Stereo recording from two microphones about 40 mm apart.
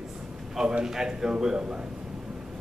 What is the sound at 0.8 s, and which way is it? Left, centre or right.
Speech, centre.